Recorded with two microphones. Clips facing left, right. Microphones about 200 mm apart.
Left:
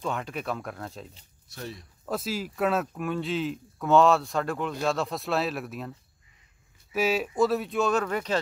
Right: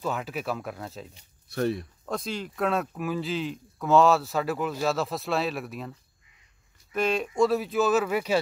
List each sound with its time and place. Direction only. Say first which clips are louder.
0.0 s speech: right 1 dB; 5° right (ahead or behind)
1.5 s speech: right 12 dB; 60° right (ahead or behind)
2.0 s speech: left 2 dB; 5° left (ahead or behind)